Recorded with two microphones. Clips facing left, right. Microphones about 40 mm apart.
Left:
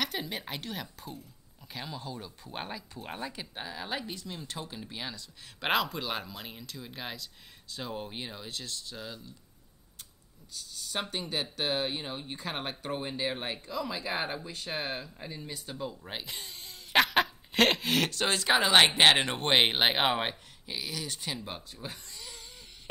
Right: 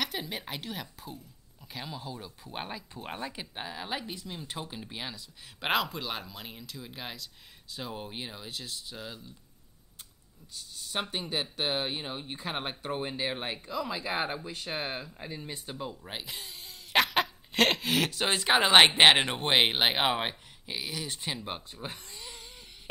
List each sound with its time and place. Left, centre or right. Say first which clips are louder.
0.0 s a woman's voice: even; centre
2.9 s speech: right 1 dB; centre
10.7 s speech: right 1 dB; centre
16.0 s a sound: even; centre
18.9 s speech: right 2 dB; centre
20.6 s speech: right 1 dB; centre